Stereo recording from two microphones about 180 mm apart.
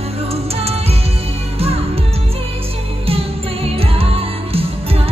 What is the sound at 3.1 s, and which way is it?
Music, 30° right (ahead or behind).